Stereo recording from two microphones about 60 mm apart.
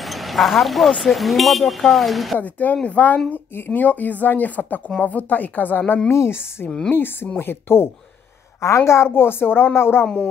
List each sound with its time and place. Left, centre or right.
0.0 s speech: centre
2.3 s speech: left
3.3 s speech: left
6.0 s a woman's voice: left
8.5 s a woman's voice: left